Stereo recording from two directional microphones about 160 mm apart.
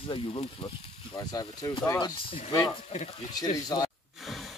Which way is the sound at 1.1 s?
25° left (ahead or behind).